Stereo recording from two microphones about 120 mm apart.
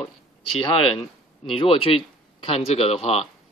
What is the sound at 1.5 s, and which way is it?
Speech, 55° left (ahead or behind).